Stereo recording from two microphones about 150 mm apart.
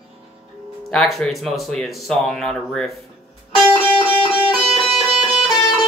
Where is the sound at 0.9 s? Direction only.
Centre (ahead or behind).